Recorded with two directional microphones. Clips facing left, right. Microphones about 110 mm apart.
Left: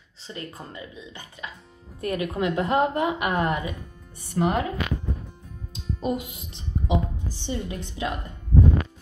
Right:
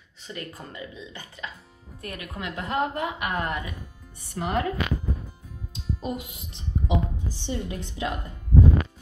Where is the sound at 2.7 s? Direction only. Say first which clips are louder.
Left 2 dB; 15° left (ahead or behind).